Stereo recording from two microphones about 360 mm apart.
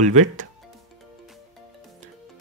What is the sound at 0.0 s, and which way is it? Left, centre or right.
Speech, right.